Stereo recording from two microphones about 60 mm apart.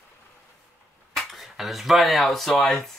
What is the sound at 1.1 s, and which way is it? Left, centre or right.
Speech, centre.